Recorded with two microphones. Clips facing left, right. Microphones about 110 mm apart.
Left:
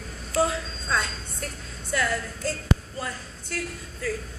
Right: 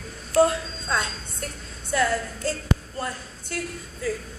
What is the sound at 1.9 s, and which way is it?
Speech, centre (ahead or behind).